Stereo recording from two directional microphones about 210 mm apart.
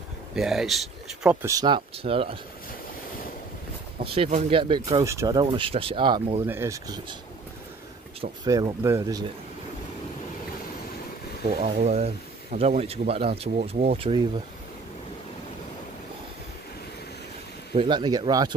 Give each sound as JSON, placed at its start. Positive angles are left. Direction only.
{"t": 0.4, "sound": "speech", "side_deg": 0}
{"t": 4.0, "sound": "speech", "side_deg": -25}
{"t": 5.0, "sound": "speech", "side_deg": -15}
{"t": 6.4, "sound": "speech", "side_deg": -10}
{"t": 8.5, "sound": "speech", "side_deg": -15}
{"t": 11.6, "sound": "speech", "side_deg": -30}
{"t": 17.7, "sound": "speech", "side_deg": -20}